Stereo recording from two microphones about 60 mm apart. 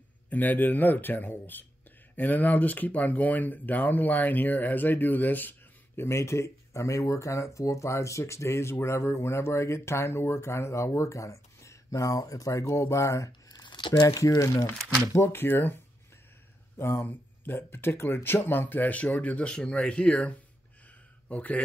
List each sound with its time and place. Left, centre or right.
0.3 s speech: left
6.0 s speech: left
15.1 s speech: left